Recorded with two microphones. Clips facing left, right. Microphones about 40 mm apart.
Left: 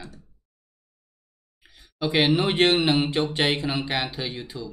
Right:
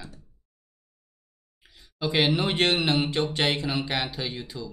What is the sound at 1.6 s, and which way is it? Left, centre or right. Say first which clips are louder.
Speech: left 3 dB; centre.